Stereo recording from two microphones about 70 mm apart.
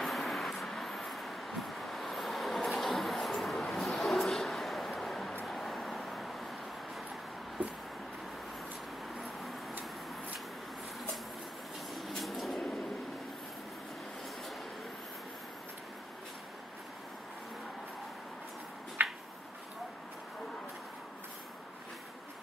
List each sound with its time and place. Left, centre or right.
0.0 s vehicle: centre
7.6 s a sound: right
11.9 s vehicle: centre
19.0 s finger snapping: right